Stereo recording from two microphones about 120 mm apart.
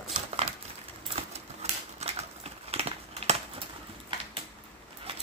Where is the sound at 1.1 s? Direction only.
60° right (ahead or behind).